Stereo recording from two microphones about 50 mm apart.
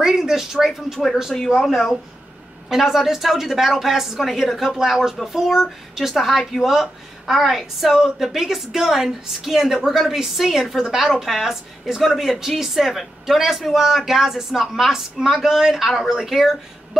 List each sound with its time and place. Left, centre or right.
0.0 s a woman's voice: centre